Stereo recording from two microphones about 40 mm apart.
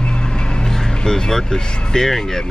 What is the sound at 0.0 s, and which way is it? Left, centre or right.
Vehicle, left.